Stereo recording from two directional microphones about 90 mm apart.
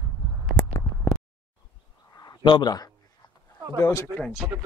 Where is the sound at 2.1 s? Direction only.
50° left (ahead or behind).